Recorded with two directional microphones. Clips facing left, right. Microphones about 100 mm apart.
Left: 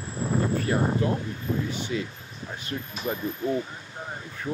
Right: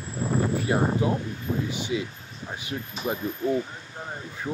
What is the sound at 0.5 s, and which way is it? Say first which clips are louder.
Speech: right 1 dB; 15° right (ahead or behind).